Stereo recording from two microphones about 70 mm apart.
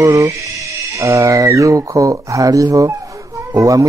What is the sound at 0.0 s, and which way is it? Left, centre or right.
Speech, right.